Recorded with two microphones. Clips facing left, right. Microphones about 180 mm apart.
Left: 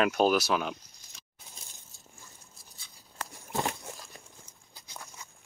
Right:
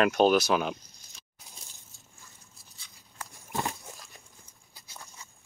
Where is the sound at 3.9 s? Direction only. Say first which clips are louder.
Left 3 dB; 80° left.